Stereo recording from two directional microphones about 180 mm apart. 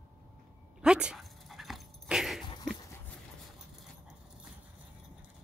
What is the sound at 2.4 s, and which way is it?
Dog, 25° left (ahead or behind).